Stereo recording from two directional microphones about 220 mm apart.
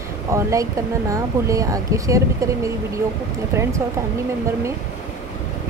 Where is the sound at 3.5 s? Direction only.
10° right (ahead or behind).